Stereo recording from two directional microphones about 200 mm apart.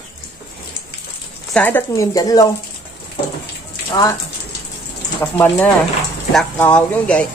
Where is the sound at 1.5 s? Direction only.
10° left (ahead or behind).